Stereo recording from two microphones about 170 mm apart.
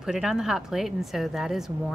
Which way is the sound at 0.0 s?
5° right (ahead or behind).